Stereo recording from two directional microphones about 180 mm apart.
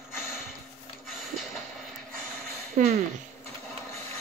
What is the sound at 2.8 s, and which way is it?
Speech, 45° right (ahead or behind).